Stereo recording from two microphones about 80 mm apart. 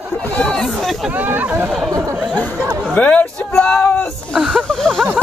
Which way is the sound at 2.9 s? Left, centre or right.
Centre.